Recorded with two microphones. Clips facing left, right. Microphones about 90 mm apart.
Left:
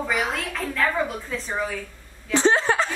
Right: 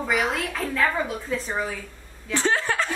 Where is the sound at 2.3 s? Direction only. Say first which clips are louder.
Left 4 dB; 25° left (ahead or behind).